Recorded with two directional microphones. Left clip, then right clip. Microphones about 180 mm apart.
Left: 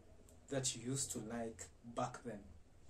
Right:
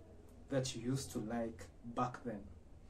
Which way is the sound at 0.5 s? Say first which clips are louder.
Right 3 dB; 15° left (ahead or behind).